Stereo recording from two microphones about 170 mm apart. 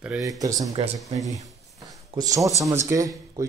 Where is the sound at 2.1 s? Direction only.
20° right (ahead or behind).